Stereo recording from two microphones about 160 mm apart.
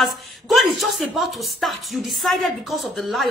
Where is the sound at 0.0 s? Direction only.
Centre (ahead or behind).